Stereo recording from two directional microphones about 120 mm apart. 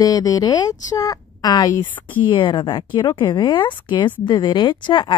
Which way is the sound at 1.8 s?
15° left (ahead or behind).